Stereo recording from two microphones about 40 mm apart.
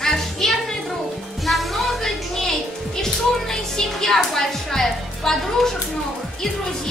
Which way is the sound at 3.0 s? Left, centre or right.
Centre.